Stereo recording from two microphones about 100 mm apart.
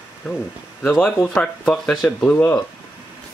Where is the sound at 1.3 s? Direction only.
5° left (ahead or behind).